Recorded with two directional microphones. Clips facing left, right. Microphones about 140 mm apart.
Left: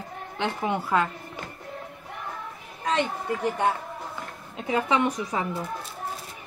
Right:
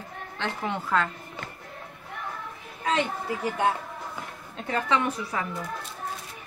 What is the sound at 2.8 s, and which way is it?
Speech, centre (ahead or behind).